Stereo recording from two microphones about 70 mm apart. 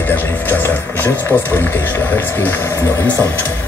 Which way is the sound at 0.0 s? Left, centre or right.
Left.